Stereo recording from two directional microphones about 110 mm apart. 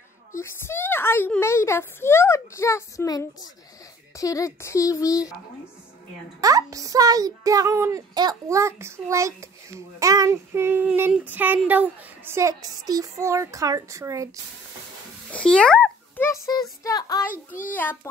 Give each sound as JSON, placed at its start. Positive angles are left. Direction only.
{"t": 0.4, "sound": "a child's voice", "side_deg": 20}
{"t": 6.4, "sound": "a child's voice", "side_deg": -30}
{"t": 15.3, "sound": "a child's voice", "side_deg": 10}
{"t": 16.5, "sound": "a child's voice", "side_deg": 35}